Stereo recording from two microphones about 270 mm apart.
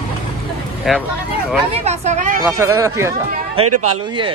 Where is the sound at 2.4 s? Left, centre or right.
Centre.